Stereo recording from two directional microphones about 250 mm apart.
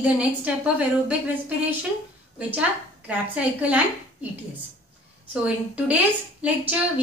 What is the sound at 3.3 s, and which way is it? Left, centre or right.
Speech, centre.